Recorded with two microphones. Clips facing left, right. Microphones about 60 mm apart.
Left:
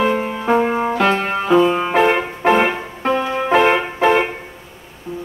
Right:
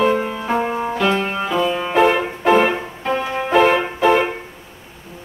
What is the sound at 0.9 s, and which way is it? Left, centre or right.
Music, left.